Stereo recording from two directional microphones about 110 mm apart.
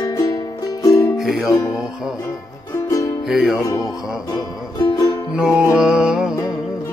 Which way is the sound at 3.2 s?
Centre (ahead or behind).